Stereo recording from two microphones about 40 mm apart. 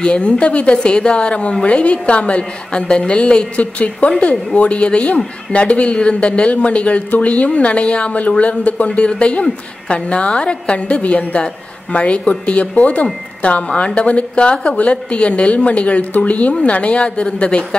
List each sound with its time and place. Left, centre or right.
0.0 s a woman's voice: left